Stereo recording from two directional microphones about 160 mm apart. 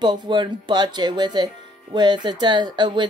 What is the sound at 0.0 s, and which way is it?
Speech, 30° right (ahead or behind).